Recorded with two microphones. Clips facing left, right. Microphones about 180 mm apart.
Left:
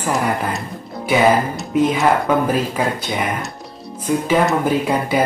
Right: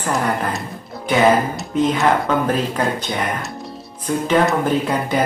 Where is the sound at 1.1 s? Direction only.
10° left (ahead or behind).